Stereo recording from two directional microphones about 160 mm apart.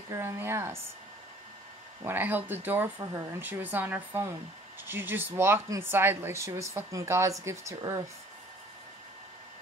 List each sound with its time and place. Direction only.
0.1 s speech: 15° right (ahead or behind)
2.0 s speech: 10° right (ahead or behind)